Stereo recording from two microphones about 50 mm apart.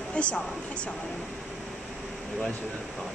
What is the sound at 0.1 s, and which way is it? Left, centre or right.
Speech, left.